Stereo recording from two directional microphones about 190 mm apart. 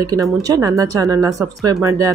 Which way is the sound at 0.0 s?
20° right (ahead or behind).